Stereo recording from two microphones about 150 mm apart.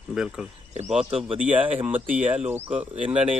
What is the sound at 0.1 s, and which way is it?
Speech, 5° right (ahead or behind).